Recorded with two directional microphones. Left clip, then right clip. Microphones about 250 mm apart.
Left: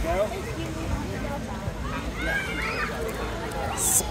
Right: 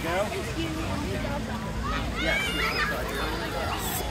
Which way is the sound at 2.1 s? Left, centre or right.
Right.